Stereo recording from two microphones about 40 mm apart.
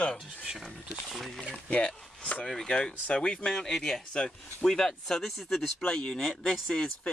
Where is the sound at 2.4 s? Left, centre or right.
Centre.